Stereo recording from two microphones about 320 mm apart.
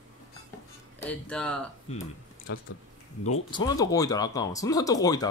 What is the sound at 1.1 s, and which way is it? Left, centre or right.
Speech, centre.